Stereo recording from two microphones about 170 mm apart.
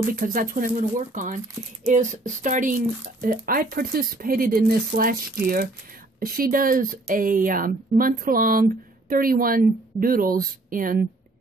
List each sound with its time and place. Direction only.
0.1 s speech: 55° right (ahead or behind)